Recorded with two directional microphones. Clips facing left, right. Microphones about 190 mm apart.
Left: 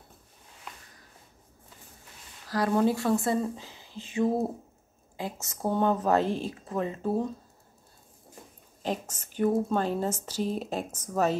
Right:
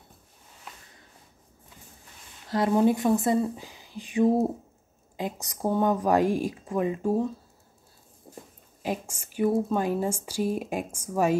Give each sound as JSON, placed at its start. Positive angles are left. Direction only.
{"t": 2.4, "sound": "speech", "side_deg": -20}
{"t": 8.8, "sound": "speech", "side_deg": -10}